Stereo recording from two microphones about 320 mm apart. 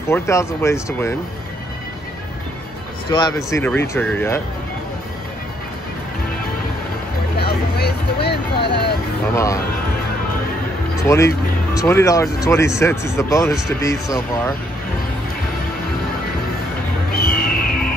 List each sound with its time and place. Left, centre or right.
0.1 s speech: centre
3.1 s speech: centre
7.3 s vehicle: left
9.3 s speech: centre
11.1 s speech: centre
17.3 s music: left